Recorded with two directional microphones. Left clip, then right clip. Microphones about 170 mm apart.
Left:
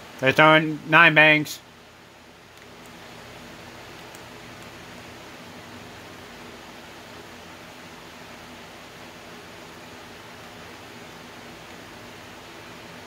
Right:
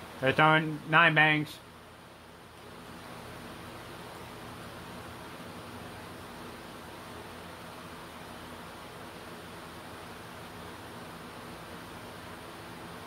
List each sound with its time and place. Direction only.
0.2 s speech: 90° left